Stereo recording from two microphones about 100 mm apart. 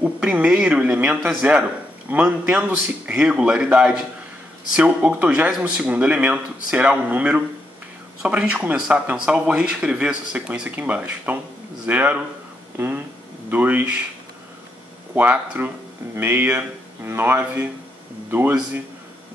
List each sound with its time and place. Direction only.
0.0 s speech: 15° right (ahead or behind)
15.1 s speech: 15° right (ahead or behind)